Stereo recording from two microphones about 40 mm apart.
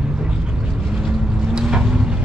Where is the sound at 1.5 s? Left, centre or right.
Centre.